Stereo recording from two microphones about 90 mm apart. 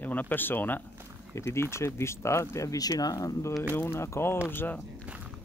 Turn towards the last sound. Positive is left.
turn(degrees=-15)  # may be behind; listen again after turning